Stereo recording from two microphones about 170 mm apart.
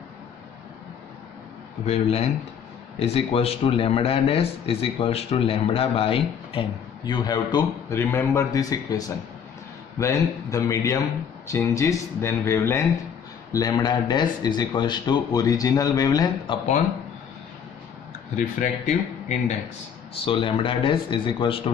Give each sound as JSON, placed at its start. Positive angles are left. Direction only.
{"t": 1.9, "sound": "speech", "side_deg": 35}
{"t": 18.3, "sound": "speech", "side_deg": 50}
{"t": 20.2, "sound": "speech", "side_deg": 30}